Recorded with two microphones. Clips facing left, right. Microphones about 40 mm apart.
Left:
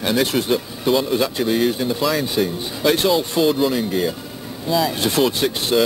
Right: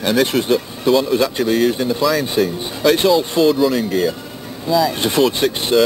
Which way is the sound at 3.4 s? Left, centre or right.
Centre.